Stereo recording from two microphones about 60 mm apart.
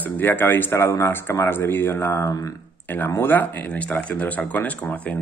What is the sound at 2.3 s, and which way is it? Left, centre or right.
Speech, left.